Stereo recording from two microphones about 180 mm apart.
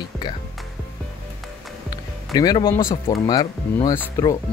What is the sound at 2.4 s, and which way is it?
Speech, 20° left (ahead or behind).